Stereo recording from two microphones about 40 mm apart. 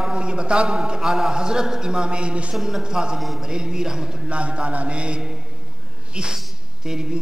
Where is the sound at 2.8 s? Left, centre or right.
Right.